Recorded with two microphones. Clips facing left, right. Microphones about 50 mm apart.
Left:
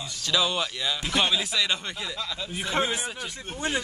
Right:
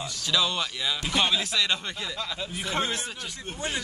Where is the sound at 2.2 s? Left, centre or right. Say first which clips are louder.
Even; centre.